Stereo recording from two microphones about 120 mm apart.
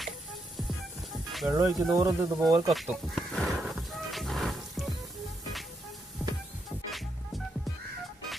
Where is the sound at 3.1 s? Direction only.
Centre (ahead or behind).